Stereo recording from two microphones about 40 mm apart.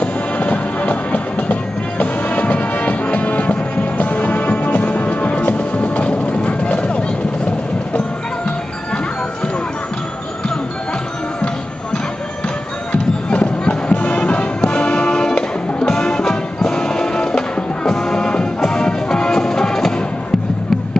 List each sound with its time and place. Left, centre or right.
0.0 s music: left
12.9 s music: left; by 19.9 s centre